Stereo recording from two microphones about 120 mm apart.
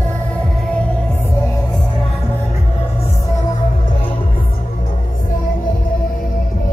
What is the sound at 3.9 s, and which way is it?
Music, 50° left (ahead or behind).